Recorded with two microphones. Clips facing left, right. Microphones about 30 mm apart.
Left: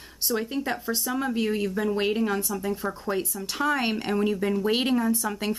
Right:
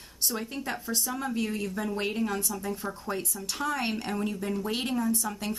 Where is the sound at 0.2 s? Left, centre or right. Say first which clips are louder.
Left 5 dB; centre.